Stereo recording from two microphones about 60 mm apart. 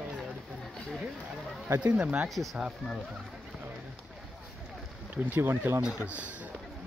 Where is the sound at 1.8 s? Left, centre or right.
Centre.